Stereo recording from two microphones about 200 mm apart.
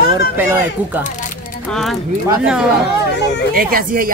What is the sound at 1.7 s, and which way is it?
Speech, centre (ahead or behind).